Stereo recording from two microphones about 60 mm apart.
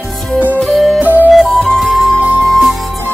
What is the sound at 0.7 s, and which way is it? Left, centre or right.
Music, centre.